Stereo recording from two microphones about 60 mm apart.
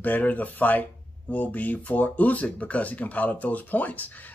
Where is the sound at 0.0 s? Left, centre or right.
Left.